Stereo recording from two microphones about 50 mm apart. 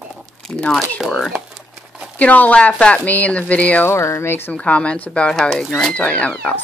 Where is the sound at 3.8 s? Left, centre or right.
Left.